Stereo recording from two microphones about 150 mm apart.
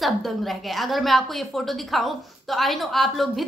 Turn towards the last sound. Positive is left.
turn(degrees=0)  # may be behind; listen again after turning